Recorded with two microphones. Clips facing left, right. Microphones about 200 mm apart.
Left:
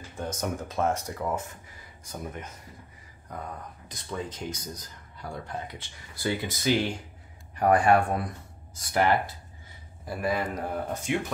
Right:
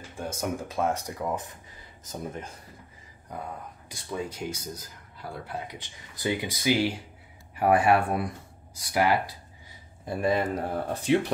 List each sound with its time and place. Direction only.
0.2 s speech: 10° right (ahead or behind)
2.0 s speech: 30° right (ahead or behind)
3.3 s speech: 10° right (ahead or behind)
10.0 s speech: 25° right (ahead or behind)